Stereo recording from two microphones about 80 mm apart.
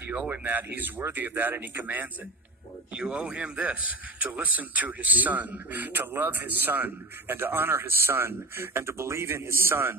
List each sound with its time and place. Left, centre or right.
0.3 s a man's voice: right
2.9 s a man's voice: centre; by 9.9 s right